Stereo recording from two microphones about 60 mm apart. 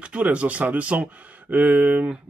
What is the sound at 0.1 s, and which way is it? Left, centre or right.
Speech, right.